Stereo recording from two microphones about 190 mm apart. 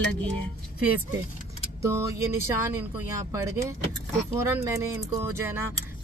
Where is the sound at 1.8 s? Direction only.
15° right (ahead or behind).